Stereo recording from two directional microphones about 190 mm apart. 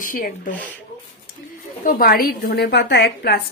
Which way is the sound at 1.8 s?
50° left (ahead or behind).